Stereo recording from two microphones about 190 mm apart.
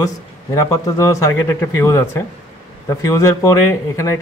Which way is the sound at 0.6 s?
15° left (ahead or behind).